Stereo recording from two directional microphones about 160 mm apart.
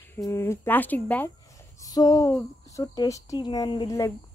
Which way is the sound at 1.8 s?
25° left (ahead or behind).